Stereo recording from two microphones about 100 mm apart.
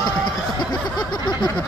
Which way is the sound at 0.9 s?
45° left (ahead or behind).